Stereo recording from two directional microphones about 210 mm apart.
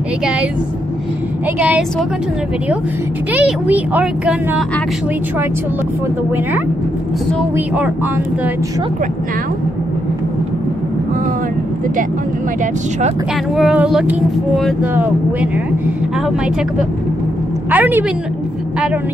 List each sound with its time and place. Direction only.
3.3 s speech: 5° right (ahead or behind)
7.5 s speech: 5° right (ahead or behind)
13.6 s speech: 5° right (ahead or behind)
17.6 s speech: 10° right (ahead or behind)